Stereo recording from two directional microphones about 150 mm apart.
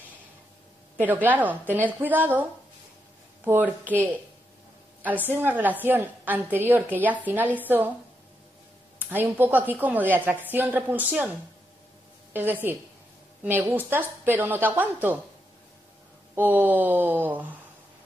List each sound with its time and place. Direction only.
0.9 s a woman's voice: 10° right (ahead or behind)
3.4 s a woman's voice: 15° right (ahead or behind)
9.0 s a woman's voice: 10° right (ahead or behind)
12.3 s a woman's voice: 15° right (ahead or behind)
16.3 s a woman's voice: 10° right (ahead or behind)